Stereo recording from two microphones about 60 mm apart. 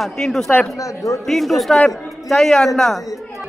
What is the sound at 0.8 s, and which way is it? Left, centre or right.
Speech, left.